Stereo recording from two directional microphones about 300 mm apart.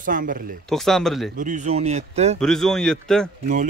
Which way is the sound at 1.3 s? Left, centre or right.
Right.